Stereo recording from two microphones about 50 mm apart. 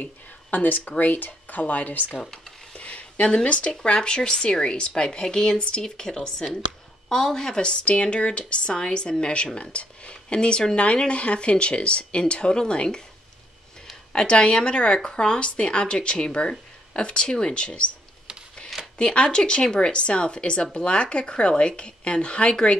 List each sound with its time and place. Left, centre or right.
0.0 s speech: left
2.8 s a sound: left
3.8 s a woman's voice: centre
14.1 s a woman's voice: left
18.9 s a woman's voice: centre